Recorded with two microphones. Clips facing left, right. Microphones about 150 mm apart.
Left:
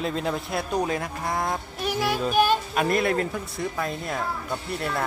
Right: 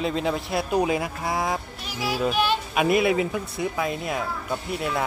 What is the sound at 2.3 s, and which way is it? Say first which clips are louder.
Speech: left 4 dB; 45° left (ahead or behind).